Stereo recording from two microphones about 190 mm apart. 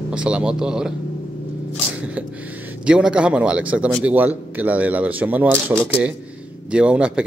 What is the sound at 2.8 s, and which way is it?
Speech, 5° right (ahead or behind).